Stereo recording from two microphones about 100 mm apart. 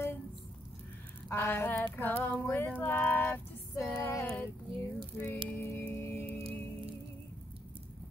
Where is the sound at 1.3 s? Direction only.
25° left (ahead or behind).